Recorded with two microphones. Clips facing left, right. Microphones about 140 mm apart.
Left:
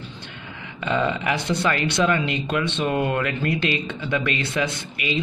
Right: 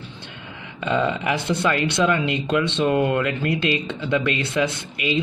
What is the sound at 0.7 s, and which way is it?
Speech, 20° right (ahead or behind).